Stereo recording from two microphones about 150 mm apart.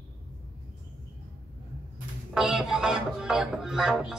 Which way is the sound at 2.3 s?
5° right (ahead or behind).